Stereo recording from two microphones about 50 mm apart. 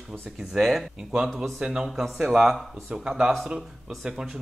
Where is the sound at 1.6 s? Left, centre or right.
Centre.